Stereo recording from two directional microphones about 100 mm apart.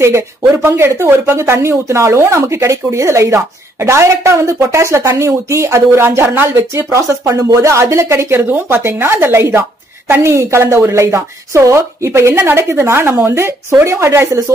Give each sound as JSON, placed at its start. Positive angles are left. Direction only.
{"t": 0.0, "sound": "speech", "side_deg": -30}